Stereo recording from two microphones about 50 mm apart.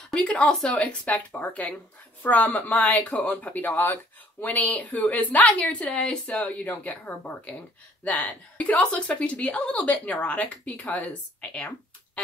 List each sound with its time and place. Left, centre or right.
0.1 s speech: left
0.4 s speech: centre
0.7 s a woman's voice: left
2.8 s a woman's voice: left